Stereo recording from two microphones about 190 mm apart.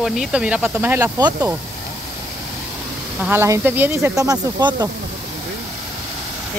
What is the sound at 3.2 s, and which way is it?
Speech, 10° right (ahead or behind).